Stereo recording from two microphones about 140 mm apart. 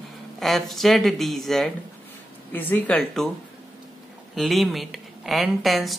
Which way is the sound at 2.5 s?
10° left (ahead or behind).